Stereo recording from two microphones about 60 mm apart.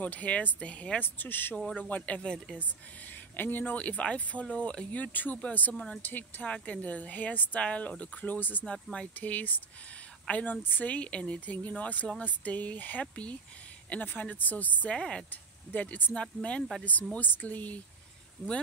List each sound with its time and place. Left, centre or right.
0.0 s speech: left
1.0 s speech: left; by 2.4 s centre
3.3 s speech: left
8.9 s speech: left
15.0 s speech: centre
15.7 s speech: left